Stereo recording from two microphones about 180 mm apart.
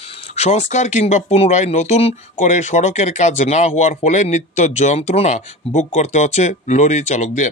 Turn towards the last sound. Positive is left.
turn(degrees=45)  # may be behind; listen again after turning